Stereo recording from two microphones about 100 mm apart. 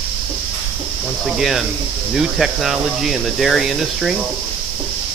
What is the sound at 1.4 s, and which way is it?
Speech, centre (ahead or behind).